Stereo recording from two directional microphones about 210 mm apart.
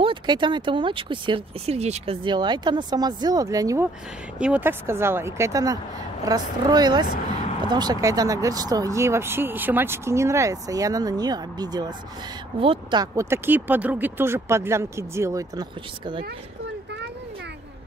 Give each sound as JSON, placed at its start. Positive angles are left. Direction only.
{"t": 0.0, "sound": "speech", "side_deg": -20}